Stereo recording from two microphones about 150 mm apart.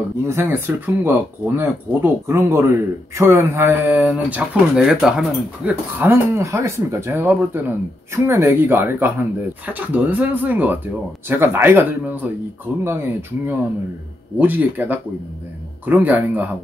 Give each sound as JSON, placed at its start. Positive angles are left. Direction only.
{"t": 0.3, "sound": "speech", "side_deg": -15}
{"t": 4.0, "sound": "speech", "side_deg": -5}